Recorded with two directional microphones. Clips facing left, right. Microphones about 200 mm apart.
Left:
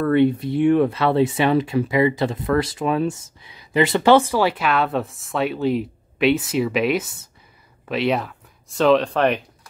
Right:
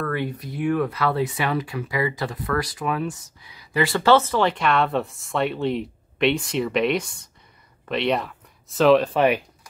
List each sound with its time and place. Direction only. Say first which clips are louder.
0.0 s speech: left 10 dB; 25° left (ahead or behind); by 9.4 s 5° right (ahead or behind)